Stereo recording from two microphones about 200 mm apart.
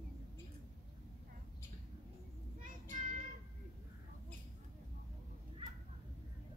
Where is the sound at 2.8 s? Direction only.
40° right (ahead or behind).